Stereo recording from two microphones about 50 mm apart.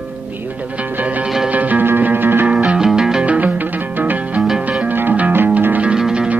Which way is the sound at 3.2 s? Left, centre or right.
Right.